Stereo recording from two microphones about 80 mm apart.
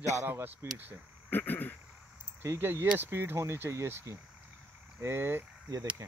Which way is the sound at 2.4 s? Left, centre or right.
Right.